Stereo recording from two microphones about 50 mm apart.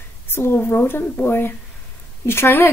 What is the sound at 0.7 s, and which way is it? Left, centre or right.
Speech, left.